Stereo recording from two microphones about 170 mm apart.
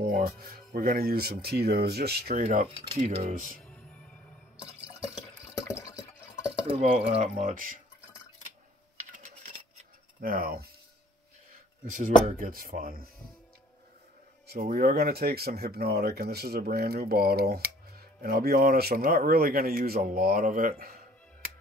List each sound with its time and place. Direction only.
0.0 s speech: 60° right (ahead or behind)
3.6 s music: 5° left (ahead or behind)
6.8 s speech: 50° right (ahead or behind)
9.1 s coin: 50° right (ahead or behind)
10.2 s speech: 60° right (ahead or behind)
11.8 s speech: 50° right (ahead or behind)
14.5 s speech: 60° right (ahead or behind)